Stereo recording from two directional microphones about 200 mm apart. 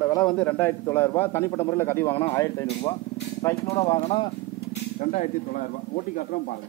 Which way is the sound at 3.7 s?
30° left (ahead or behind).